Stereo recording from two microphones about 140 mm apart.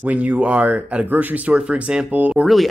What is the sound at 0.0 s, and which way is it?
Speech, 10° right (ahead or behind).